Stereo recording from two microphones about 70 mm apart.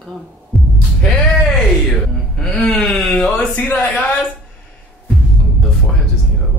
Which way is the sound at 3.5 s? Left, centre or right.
Centre.